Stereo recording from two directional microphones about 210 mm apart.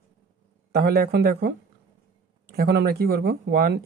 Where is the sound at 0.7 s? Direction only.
50° right (ahead or behind).